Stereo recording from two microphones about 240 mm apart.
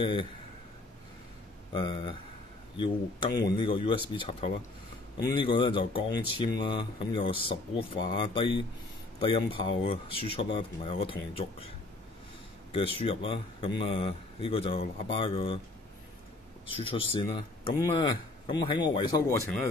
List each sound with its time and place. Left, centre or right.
0.0 s speech: centre
1.7 s speech: centre
3.3 s speech: centre
12.7 s speech: left
16.8 s speech: left